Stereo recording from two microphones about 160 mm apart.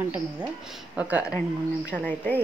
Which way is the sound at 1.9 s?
10° left (ahead or behind).